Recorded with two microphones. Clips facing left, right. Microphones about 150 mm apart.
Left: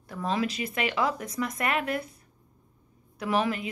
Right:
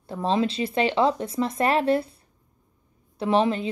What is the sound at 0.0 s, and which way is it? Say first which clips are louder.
A woman's voice: right 5 dB; 30° right (ahead or behind).